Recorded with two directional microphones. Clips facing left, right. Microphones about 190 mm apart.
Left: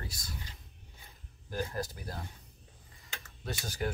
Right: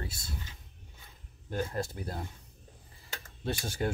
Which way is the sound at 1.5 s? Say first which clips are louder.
Right 2 dB; 25° right (ahead or behind).